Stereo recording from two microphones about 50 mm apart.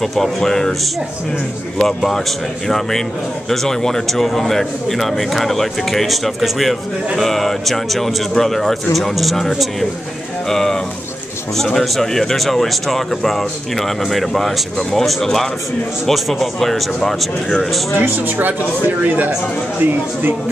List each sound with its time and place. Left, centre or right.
0.0 s speech: centre
1.9 s a man's voice: centre
10.5 s a man's voice: centre
17.9 s speech: right